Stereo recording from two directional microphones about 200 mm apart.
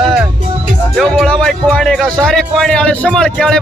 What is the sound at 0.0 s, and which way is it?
Music, 5° right (ahead or behind).